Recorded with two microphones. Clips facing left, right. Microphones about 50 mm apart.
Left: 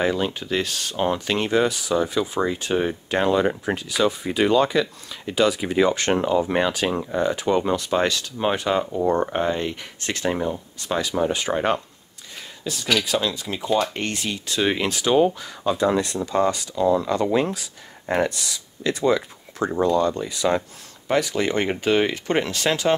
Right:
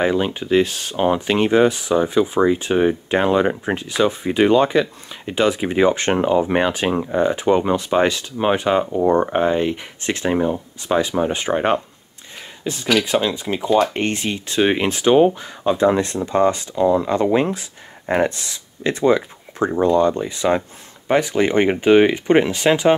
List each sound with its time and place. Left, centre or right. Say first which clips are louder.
0.0 s speech: right 4 dB; right
13.6 s speech: right 5 dB; centre
13.8 s speech: right 5 dB; right